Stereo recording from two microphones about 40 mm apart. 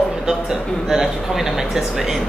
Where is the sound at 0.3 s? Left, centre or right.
Centre.